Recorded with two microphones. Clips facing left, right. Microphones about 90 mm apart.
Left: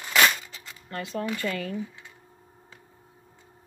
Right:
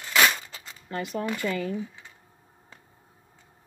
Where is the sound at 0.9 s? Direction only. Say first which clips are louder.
Right 1 dB; 15° right (ahead or behind).